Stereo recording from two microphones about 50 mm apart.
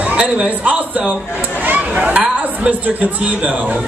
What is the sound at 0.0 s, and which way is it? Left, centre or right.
A man's voice, right.